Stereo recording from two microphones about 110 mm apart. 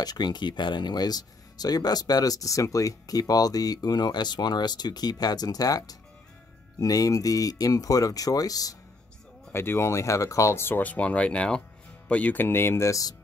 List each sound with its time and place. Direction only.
0.0 s speech: 40° left (ahead or behind)
9.5 s speech: 20° left (ahead or behind)